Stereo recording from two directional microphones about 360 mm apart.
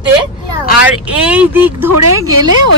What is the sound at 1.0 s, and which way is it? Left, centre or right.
Speech, centre.